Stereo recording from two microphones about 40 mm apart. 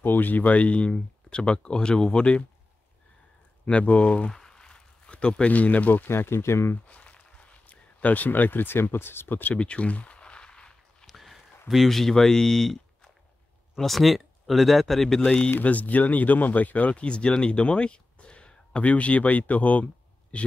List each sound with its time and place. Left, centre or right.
0.0 s speech: left
0.6 s speech: left
3.6 s speech: left
4.3 s a sound: centre
5.5 s speech: left
6.0 s speech: left
6.9 s a sound: left
9.6 s a sound: left
11.1 s a sound: centre
11.9 s speech: centre
15.1 s speech: centre
15.6 s speech: left
16.9 s speech: left